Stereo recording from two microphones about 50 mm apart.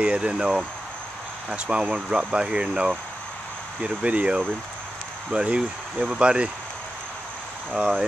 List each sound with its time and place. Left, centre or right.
0.0 s speech: right